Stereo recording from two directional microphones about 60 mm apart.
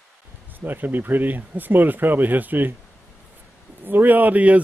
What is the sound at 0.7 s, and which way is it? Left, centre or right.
Speech, right.